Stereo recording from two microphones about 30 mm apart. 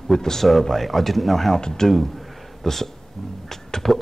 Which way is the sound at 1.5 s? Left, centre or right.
Left.